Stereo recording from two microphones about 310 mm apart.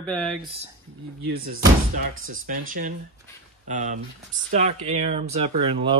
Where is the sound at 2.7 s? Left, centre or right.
Right.